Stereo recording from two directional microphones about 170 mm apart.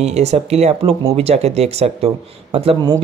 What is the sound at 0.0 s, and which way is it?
Speech, 40° right (ahead or behind).